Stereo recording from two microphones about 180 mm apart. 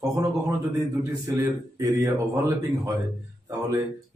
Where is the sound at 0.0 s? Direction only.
20° right (ahead or behind).